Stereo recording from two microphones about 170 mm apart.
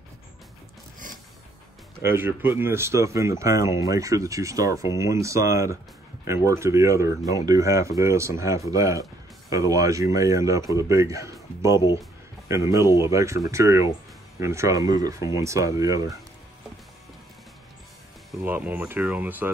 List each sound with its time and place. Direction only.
2.0 s speech: 15° right (ahead or behind)
12.4 s speech: 15° right (ahead or behind)
18.4 s speech: 10° right (ahead or behind)